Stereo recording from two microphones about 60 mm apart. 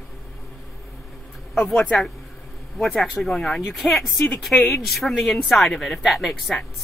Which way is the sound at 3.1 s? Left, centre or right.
Centre.